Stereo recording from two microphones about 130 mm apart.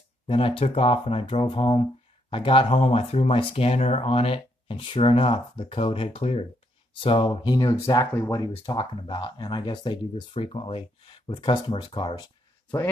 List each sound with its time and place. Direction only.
0.3 s speech: 45° left (ahead or behind); by 8.7 s 25° left (ahead or behind)
8.7 s speech: 45° left (ahead or behind)